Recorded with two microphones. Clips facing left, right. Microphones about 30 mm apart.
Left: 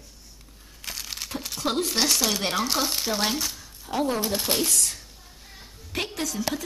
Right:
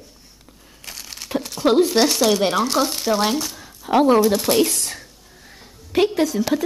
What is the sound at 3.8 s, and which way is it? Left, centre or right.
Speech, right.